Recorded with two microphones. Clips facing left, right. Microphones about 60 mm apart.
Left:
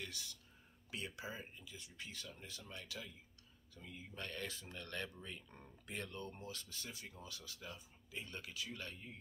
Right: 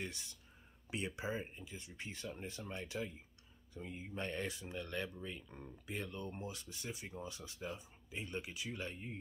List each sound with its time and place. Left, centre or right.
0.0 s speech: right